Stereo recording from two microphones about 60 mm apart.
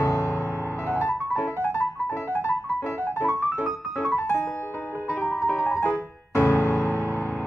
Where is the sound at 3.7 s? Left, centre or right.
Centre.